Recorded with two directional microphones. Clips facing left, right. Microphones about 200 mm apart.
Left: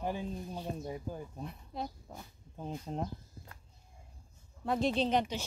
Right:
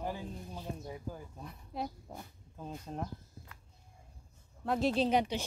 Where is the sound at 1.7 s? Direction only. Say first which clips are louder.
Right 4 dB; 10° right (ahead or behind).